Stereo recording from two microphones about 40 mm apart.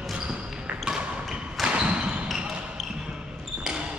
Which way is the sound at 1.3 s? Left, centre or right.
Centre.